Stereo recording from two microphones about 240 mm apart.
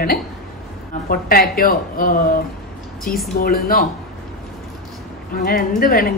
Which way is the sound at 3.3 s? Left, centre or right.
Left.